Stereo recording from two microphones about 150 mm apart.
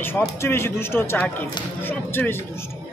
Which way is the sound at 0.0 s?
15° left (ahead or behind).